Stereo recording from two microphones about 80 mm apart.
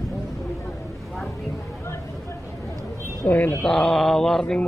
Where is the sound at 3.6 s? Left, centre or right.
Centre.